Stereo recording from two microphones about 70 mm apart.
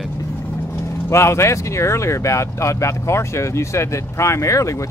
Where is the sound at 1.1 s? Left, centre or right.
Left.